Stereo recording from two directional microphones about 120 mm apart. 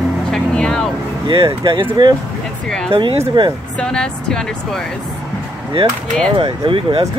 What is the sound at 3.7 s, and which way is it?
Speech, 5° left (ahead or behind).